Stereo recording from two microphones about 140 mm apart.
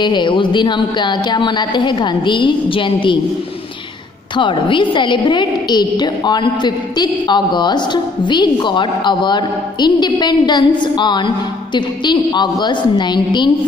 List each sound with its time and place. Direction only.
0.0 s a woman's voice: 35° left (ahead or behind)
4.4 s a woman's voice: 35° left (ahead or behind)